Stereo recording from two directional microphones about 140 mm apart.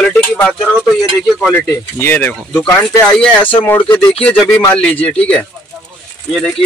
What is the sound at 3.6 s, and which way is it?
Speech, 15° left (ahead or behind).